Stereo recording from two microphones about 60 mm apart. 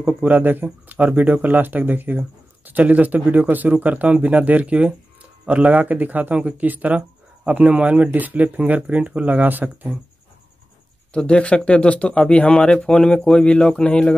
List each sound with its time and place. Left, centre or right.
0.0 s speech: right
11.1 s speech: centre